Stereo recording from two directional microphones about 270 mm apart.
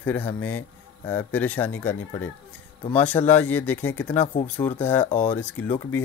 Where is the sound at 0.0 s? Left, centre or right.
Centre.